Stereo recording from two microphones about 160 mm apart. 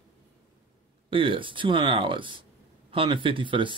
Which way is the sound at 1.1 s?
30° right (ahead or behind).